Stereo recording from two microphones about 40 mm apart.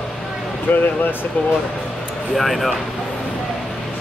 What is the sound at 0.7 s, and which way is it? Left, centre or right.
Speech, left.